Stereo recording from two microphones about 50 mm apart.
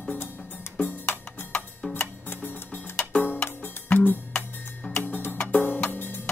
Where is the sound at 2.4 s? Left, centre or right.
Left.